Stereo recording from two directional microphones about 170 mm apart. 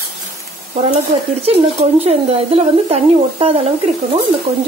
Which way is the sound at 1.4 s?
40° right (ahead or behind).